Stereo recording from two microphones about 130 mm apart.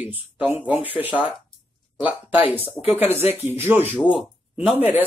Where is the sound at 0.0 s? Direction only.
15° right (ahead or behind).